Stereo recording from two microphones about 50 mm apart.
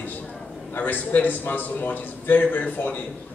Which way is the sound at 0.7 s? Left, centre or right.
Left.